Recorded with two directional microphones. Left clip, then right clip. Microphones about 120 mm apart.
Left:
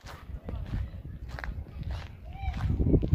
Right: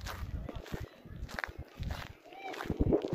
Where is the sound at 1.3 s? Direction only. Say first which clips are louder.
Right 2 dB; 80° right.